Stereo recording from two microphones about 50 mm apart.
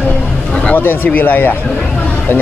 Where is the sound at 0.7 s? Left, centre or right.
Left.